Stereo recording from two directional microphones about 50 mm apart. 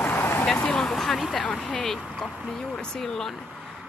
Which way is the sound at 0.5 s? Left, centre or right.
Centre.